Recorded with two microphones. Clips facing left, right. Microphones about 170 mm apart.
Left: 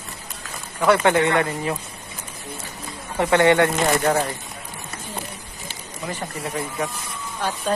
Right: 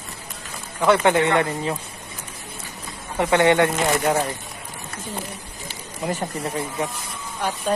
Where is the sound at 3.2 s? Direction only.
20° right (ahead or behind).